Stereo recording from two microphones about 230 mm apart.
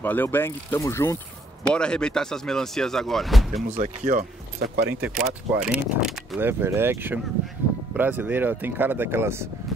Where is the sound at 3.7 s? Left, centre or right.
Right.